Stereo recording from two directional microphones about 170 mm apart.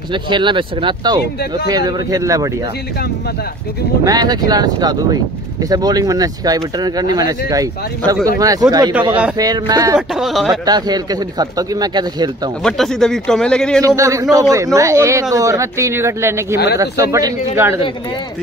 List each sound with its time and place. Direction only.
0.1 s speech: 30° right (ahead or behind)
4.0 s speech: 25° right (ahead or behind)
9.9 s a man's voice: centre (ahead or behind)
10.5 s speech: 25° right (ahead or behind)
12.6 s a man's voice: centre (ahead or behind)
13.8 s speech: 20° right (ahead or behind)